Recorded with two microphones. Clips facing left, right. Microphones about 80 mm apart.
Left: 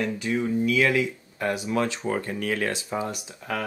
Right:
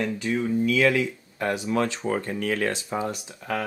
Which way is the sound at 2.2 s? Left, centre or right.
Right.